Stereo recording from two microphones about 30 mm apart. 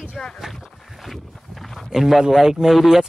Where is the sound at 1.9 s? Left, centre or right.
Centre.